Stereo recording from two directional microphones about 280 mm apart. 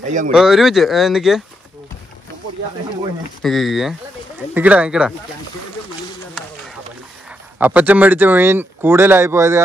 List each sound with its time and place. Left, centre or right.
0.0 s speech: right
0.3 s speech: centre
3.4 s speech: centre
7.2 s speech: centre